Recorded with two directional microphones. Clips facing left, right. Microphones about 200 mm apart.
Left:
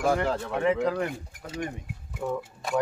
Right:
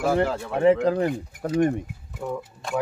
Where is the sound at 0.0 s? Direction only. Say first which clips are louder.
Right 3 dB; 5° right (ahead or behind).